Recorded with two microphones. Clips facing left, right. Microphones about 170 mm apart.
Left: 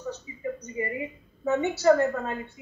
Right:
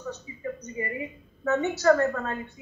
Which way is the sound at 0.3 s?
20° left (ahead or behind).